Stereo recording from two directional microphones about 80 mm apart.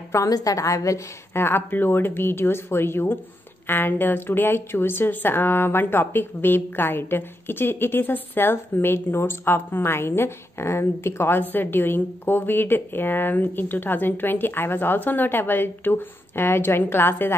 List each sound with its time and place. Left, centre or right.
0.3 s a woman's voice: left
1.3 s a woman's voice: left